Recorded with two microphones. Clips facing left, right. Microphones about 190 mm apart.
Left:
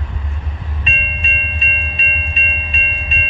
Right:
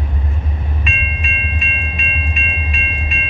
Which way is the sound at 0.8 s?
35° left (ahead or behind).